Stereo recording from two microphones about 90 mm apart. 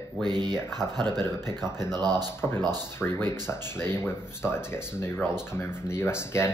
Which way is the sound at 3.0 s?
25° left (ahead or behind).